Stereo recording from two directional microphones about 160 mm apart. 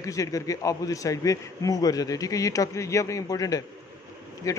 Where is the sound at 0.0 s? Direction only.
20° left (ahead or behind).